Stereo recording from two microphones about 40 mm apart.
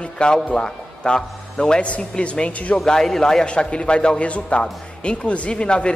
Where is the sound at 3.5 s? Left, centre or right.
Left.